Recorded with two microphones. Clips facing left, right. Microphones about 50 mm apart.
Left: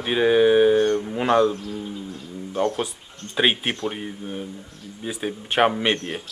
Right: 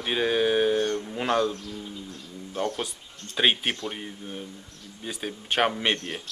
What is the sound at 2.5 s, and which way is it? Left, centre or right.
Speech, centre.